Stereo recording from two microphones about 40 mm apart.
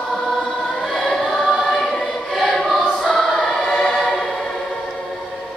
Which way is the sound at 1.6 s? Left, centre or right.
Left.